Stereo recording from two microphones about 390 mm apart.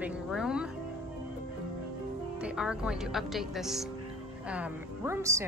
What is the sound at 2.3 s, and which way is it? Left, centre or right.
Speech, centre.